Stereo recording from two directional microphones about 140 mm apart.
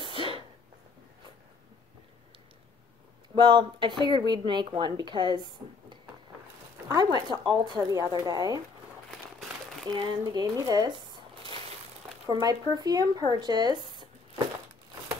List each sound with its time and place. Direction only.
0.0 s sneeze: 35° right (ahead or behind)
3.3 s a woman's voice: 35° right (ahead or behind)
9.8 s speech: 30° right (ahead or behind)
12.3 s a woman's voice: 30° right (ahead or behind)